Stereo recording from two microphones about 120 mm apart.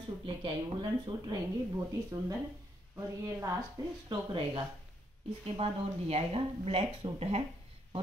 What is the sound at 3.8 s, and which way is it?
Speech, 30° right (ahead or behind).